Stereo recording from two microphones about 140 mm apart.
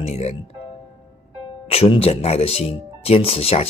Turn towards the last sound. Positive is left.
turn(degrees=45)  # may be behind; listen again after turning